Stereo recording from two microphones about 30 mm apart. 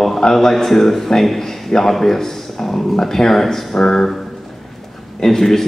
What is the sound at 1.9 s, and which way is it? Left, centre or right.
A man's voice, centre.